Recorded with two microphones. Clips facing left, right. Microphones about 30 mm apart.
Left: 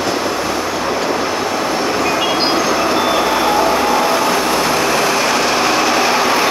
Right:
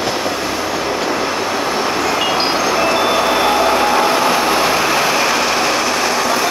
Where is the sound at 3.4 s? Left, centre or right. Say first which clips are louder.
Even; right.